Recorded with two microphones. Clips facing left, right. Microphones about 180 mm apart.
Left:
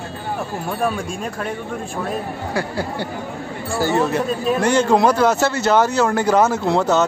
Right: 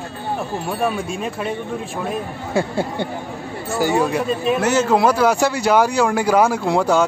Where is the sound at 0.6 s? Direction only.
Centre (ahead or behind).